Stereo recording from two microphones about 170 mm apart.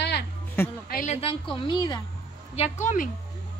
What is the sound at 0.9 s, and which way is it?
Speech, 45° left (ahead or behind).